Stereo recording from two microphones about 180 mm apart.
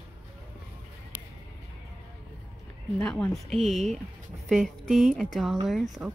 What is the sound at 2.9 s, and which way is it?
Speech, 5° left (ahead or behind).